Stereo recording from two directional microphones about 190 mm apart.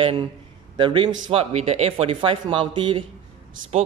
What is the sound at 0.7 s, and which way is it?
Speech, 25° right (ahead or behind).